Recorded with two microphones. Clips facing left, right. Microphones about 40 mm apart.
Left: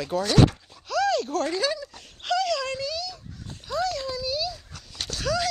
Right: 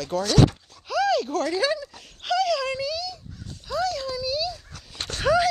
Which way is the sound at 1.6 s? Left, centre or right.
Centre.